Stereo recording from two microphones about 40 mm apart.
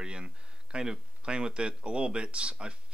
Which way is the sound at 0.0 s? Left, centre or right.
Right.